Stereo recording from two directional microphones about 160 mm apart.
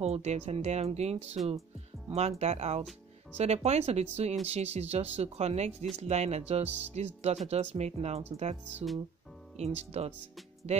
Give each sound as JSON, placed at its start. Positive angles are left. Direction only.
{"t": 0.0, "sound": "speech", "side_deg": -40}